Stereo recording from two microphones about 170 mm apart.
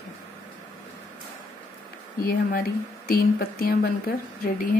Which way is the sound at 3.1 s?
60° left (ahead or behind).